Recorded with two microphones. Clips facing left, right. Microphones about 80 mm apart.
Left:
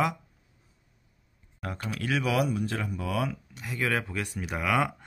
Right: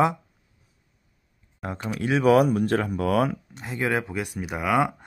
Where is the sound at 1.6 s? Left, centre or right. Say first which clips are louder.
Right 5 dB; right.